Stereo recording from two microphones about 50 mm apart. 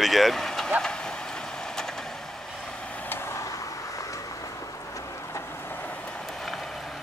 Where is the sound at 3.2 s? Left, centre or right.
Left.